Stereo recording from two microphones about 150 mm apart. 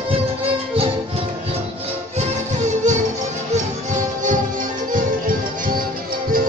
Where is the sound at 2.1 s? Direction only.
50° right (ahead or behind).